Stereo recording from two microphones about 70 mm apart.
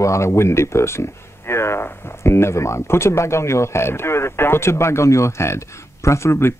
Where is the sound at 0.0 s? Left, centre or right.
Left.